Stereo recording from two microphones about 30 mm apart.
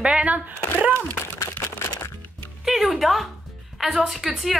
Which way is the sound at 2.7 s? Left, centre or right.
Centre.